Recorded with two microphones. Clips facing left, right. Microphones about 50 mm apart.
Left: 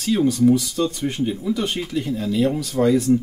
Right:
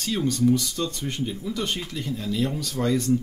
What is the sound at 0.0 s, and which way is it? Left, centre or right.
Speech, centre.